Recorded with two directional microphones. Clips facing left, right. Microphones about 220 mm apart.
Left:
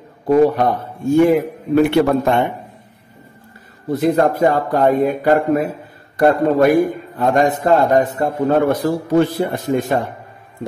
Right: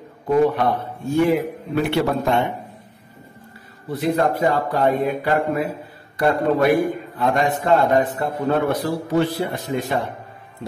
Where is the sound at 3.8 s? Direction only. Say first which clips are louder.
Left 5 dB; 45° left (ahead or behind).